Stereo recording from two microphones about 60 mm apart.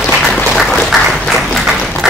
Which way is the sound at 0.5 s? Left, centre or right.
Centre.